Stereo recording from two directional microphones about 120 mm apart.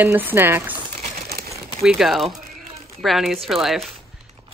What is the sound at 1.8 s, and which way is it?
Speech, 5° right (ahead or behind).